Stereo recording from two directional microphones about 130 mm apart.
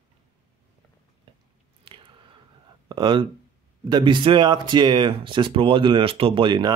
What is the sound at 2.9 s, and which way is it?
Speech, 35° right (ahead or behind).